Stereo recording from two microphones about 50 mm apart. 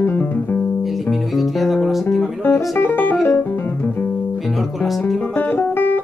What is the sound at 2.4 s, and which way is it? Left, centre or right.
Music, left.